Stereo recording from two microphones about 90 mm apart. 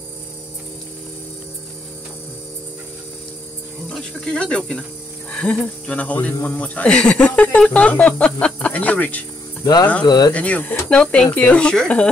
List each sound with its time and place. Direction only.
3.9 s speech: 5° left (ahead or behind)
10.0 s speech: 50° left (ahead or behind)
10.3 s speech: 15° left (ahead or behind)